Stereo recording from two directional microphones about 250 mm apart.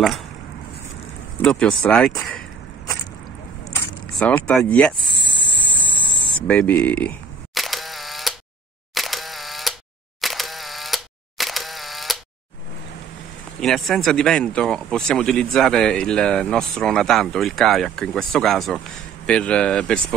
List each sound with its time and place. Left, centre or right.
1.4 s speech: centre
3.7 s speech: centre
4.9 s a sound: centre
5.6 s a sound: centre
6.4 s single-lens reflex camera: centre
8.9 s camera: centre
10.2 s single-lens reflex camera: centre
13.6 s speech: centre